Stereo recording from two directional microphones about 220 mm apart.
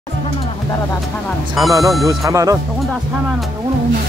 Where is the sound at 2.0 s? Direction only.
15° right (ahead or behind).